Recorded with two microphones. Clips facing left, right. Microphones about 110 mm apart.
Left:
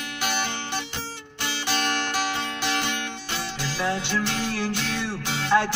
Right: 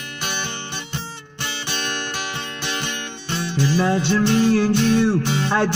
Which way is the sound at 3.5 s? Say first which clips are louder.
Right 9 dB; 55° right (ahead or behind).